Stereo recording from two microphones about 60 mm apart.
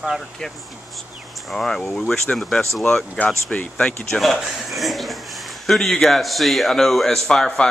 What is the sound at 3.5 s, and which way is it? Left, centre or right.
Speech, centre.